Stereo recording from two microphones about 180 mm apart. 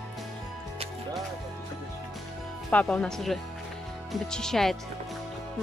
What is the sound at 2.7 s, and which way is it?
Speech, 5° left (ahead or behind).